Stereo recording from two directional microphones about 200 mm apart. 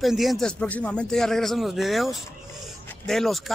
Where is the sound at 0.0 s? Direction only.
Centre (ahead or behind).